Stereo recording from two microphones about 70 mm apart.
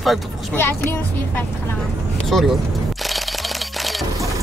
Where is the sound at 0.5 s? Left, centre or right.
Left.